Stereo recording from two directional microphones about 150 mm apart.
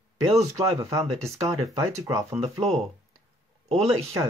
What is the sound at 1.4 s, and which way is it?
Speech, 25° right (ahead or behind).